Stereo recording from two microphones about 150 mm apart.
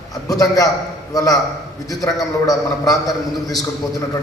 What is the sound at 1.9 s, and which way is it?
A man's voice, 25° left (ahead or behind).